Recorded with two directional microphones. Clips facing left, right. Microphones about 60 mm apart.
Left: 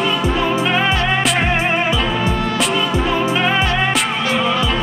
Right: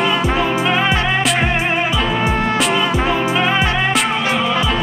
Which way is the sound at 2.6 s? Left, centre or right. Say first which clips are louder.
Right 1 dB; centre.